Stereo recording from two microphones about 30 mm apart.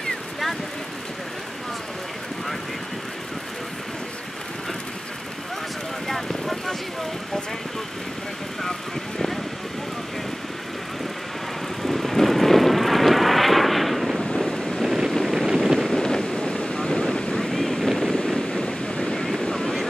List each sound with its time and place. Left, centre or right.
6.0 s vehicle: centre
11.8 s vehicle: centre
14.2 s vehicle: centre
14.8 s vehicle: centre
16.0 s thunder: left
16.3 s vehicle: left
16.7 s vehicle: centre
17.5 s boat: centre
18.1 s wind noise: left
18.6 s waves: left